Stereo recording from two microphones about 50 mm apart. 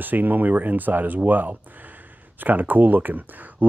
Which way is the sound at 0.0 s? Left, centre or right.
Right.